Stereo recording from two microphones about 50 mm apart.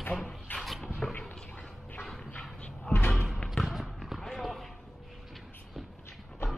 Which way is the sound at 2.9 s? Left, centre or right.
Centre.